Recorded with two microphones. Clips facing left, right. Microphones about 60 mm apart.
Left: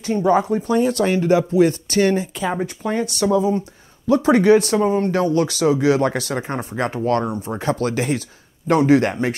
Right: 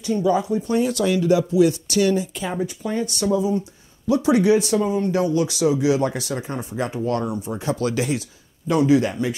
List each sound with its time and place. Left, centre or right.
0.0 s speech: left